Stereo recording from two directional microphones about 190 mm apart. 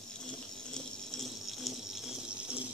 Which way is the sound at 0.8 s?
Centre (ahead or behind).